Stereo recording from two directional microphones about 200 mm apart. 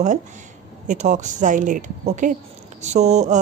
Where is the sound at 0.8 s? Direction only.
35° right (ahead or behind).